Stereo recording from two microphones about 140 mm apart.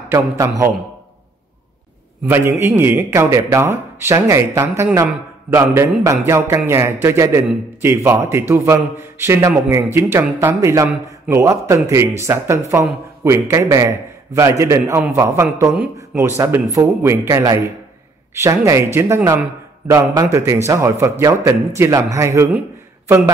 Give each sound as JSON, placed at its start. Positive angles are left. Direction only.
{"t": 0.1, "sound": "speech", "side_deg": -20}
{"t": 2.2, "sound": "speech", "side_deg": -20}
{"t": 6.2, "sound": "music", "side_deg": -15}
{"t": 7.8, "sound": "speech", "side_deg": -20}